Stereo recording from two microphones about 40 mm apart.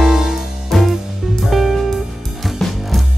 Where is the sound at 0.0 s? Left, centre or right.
Centre.